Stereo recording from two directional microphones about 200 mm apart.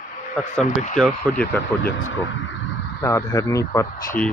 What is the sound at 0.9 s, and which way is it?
Speech, 5° left (ahead or behind).